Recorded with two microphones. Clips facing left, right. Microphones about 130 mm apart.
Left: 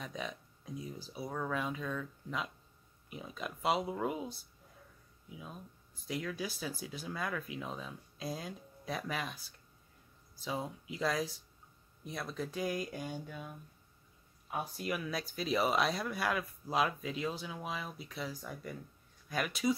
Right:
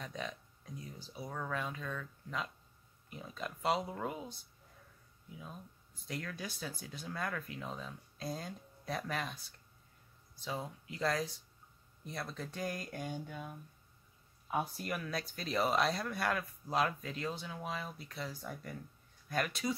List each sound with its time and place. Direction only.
0.0 s speech: 10° left (ahead or behind)
5.3 s speech: 10° left (ahead or behind)
10.4 s speech: 15° left (ahead or behind); by 13.5 s centre (ahead or behind)
14.8 s speech: 5° left (ahead or behind)